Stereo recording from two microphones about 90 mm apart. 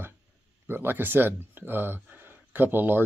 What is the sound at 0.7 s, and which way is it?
Speech, 20° right (ahead or behind).